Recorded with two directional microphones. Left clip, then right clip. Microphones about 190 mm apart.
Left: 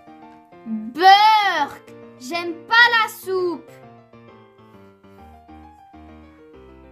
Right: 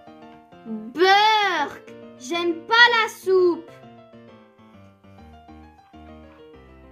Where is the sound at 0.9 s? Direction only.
25° left (ahead or behind).